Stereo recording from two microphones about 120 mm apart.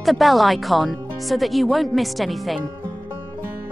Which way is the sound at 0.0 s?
Centre (ahead or behind).